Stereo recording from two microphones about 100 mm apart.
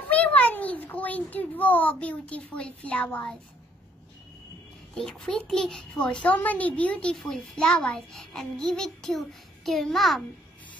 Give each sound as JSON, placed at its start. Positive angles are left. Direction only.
{"t": 0.1, "sound": "a sound", "side_deg": 15}
{"t": 0.6, "sound": "a child's voice", "side_deg": 15}
{"t": 4.9, "sound": "a child's voice", "side_deg": 5}